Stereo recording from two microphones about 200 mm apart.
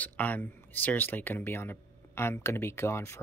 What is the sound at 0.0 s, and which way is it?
Speech, 10° left (ahead or behind).